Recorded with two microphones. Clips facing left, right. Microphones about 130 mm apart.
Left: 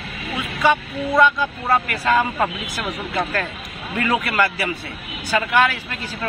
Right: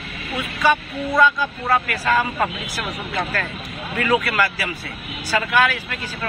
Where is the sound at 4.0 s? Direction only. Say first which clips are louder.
Even; 25° left (ahead or behind).